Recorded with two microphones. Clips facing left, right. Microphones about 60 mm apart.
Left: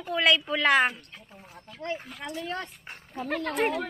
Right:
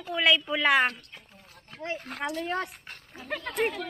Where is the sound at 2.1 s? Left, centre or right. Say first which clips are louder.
Right 7 dB; right.